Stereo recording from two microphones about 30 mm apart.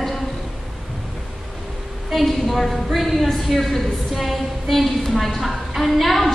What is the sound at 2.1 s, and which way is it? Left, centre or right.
A woman's voice, centre.